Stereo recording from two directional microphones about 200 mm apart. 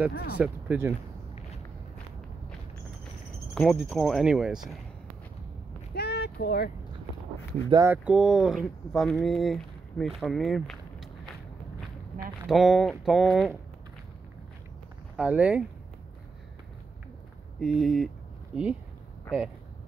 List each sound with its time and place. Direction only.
0.4 s speech: 10° right (ahead or behind)
3.5 s speech: centre (ahead or behind)
5.9 s a sound: 55° left (ahead or behind)
7.7 s speech: 10° right (ahead or behind)
12.4 s speech: centre (ahead or behind)
15.1 s speech: 5° right (ahead or behind)
17.6 s speech: centre (ahead or behind)